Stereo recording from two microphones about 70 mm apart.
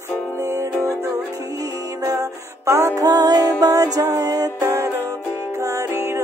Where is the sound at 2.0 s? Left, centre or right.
Right.